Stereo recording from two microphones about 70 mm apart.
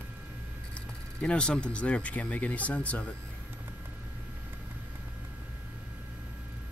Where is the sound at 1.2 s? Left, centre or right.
Centre.